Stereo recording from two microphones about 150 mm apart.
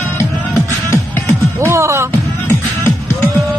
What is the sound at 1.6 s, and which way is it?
Music, 20° right (ahead or behind).